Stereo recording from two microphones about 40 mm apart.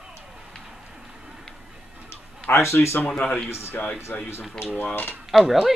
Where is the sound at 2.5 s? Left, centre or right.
Left.